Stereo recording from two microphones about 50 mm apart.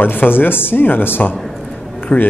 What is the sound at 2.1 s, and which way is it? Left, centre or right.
Speech, left.